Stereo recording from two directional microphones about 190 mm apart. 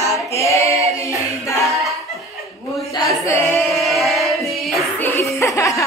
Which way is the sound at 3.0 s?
15° left (ahead or behind).